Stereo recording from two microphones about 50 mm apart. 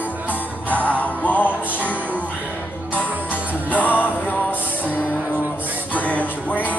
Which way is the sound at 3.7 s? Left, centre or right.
Left.